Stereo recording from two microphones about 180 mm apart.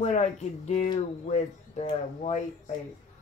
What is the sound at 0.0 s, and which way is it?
Speech, 40° left (ahead or behind).